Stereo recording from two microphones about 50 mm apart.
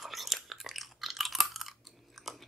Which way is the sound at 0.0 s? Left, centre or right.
Centre.